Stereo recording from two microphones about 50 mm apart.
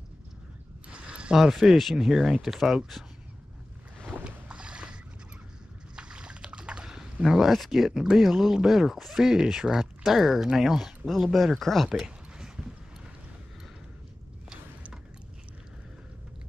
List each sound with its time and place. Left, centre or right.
0.8 s a sound: right
1.3 s speech: centre
4.2 s boat: right
5.9 s speech: centre
11.3 s speech: centre